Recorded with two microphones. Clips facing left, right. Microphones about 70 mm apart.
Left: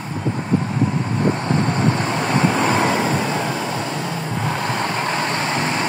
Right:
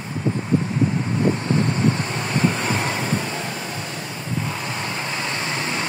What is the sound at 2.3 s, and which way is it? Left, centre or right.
Vehicle, left.